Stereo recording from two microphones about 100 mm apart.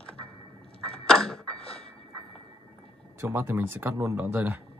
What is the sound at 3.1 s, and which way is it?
Speech, 20° right (ahead or behind).